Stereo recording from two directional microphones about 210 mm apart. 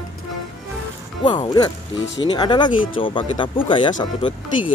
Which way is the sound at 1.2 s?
20° left (ahead or behind).